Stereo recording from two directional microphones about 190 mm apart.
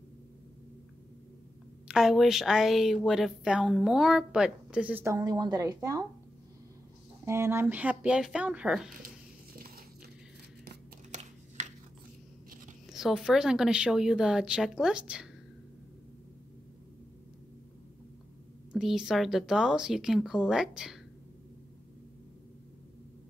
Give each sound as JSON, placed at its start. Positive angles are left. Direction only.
{"t": 1.9, "sound": "a woman's voice", "side_deg": -5}
{"t": 7.2, "sound": "speech", "side_deg": -15}
{"t": 11.1, "sound": "a sound", "side_deg": -40}
{"t": 12.9, "sound": "a woman's voice", "side_deg": -5}
{"t": 18.7, "sound": "a woman's voice", "side_deg": 0}